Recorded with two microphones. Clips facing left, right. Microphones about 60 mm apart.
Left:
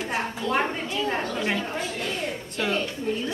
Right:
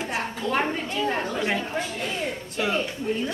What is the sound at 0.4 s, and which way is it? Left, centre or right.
A woman's voice, right.